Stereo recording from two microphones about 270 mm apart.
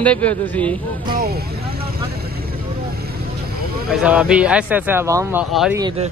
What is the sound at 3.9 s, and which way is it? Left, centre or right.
Speech, centre.